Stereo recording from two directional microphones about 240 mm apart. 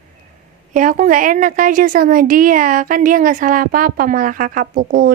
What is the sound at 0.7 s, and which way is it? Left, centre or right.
A woman's voice, right.